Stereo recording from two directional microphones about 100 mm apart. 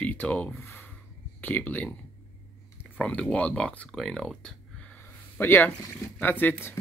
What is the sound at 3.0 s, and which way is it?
Speech, 10° left (ahead or behind).